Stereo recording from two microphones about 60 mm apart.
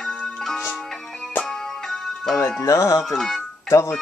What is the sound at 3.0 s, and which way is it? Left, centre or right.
Music, centre.